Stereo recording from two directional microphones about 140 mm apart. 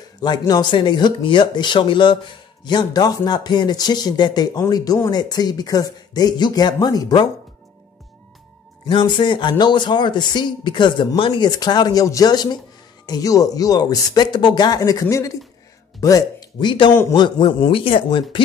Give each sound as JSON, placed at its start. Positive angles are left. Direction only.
{"t": 0.2, "sound": "speech", "side_deg": 30}
{"t": 8.8, "sound": "speech", "side_deg": 35}